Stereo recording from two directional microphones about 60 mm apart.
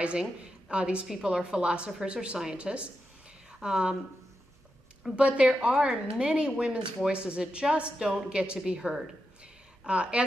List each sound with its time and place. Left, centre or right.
0.0 s a woman's voice: centre
5.1 s a woman's voice: right